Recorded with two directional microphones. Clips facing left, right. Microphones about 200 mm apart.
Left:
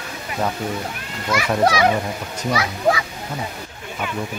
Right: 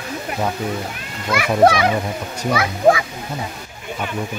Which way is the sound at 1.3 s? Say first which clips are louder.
Right 4 dB; 55° right (ahead or behind).